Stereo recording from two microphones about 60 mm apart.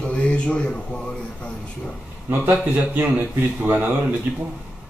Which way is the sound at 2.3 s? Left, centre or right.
Right.